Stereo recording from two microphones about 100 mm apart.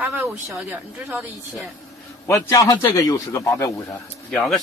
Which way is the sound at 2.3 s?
35° left (ahead or behind).